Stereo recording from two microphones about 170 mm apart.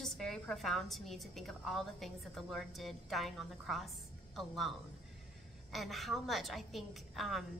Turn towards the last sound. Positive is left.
turn(degrees=0)  # may be behind; listen again after turning